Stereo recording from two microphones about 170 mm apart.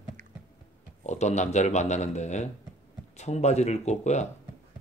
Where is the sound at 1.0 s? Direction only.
45° left (ahead or behind).